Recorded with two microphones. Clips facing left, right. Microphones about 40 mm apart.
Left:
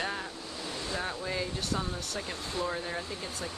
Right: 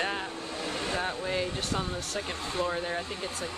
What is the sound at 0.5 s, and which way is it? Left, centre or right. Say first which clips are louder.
Vehicle: right 4 dB; right.